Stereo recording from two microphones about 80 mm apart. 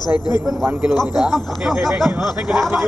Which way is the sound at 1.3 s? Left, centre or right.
Centre.